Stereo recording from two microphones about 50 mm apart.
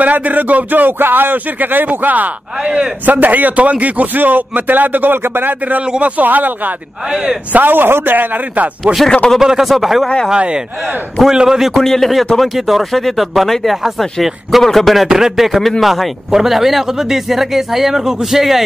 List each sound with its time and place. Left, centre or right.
0.0 s a man's voice: right
2.6 s a man's voice: centre
3.1 s a man's voice: right
9.4 s speech: centre
10.3 s a man's voice: centre
11.8 s speech: centre